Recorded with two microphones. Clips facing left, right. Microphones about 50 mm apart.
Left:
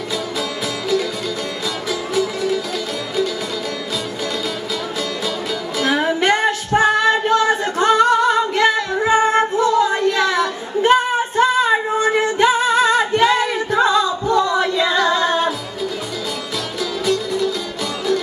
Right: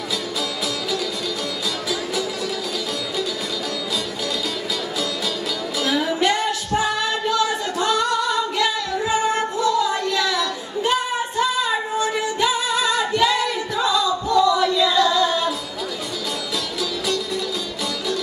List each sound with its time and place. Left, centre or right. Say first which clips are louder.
1.9 s music: left 6 dB; left
5.8 s music: left 3 dB; left
14.3 s singing: even; left